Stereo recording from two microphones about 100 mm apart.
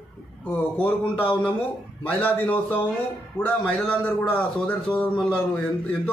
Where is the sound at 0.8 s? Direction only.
15° left (ahead or behind).